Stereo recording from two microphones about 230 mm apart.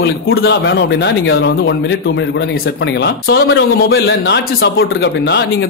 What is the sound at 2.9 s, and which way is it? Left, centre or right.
Speech, left.